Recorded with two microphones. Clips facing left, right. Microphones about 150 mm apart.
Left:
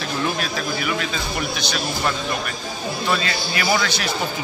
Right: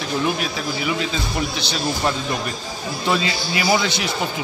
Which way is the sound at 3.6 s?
20° right (ahead or behind).